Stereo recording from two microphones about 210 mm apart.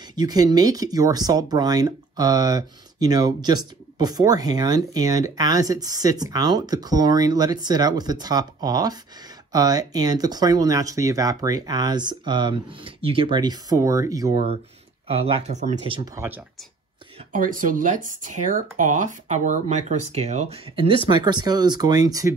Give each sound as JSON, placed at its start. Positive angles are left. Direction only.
{"t": 0.1, "sound": "speech", "side_deg": -20}
{"t": 16.2, "sound": "speech", "side_deg": -10}
{"t": 17.3, "sound": "speech", "side_deg": -40}